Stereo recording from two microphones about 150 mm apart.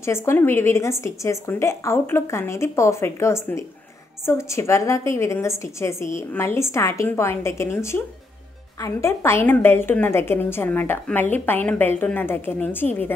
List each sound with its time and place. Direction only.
0.0 s a woman's voice: 15° left (ahead or behind)